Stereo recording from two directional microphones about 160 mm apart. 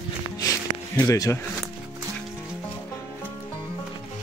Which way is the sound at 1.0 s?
20° left (ahead or behind).